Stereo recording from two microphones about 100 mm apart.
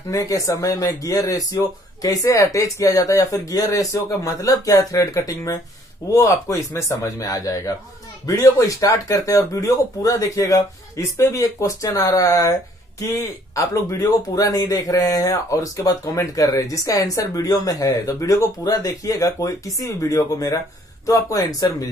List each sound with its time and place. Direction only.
0.1 s speech: 35° left (ahead or behind)